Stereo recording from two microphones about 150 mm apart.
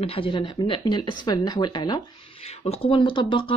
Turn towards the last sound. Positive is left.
turn(degrees=35)  # may be behind; listen again after turning